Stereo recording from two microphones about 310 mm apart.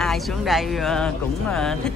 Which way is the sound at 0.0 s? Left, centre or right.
Centre.